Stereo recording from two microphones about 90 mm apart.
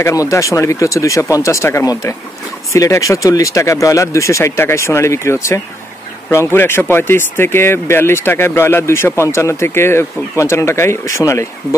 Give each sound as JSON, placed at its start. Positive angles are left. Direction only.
{"t": 0.0, "sound": "speech", "side_deg": 35}